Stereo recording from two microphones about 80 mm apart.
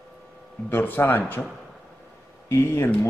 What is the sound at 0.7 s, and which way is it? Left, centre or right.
Speech, left.